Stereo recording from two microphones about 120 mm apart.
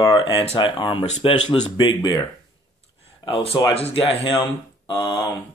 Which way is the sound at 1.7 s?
40° left (ahead or behind).